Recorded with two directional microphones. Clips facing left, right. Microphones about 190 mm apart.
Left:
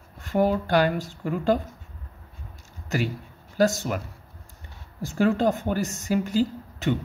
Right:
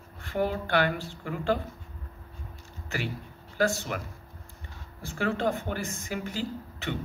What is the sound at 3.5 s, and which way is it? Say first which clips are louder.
Speech: left 5 dB; 40° left (ahead or behind).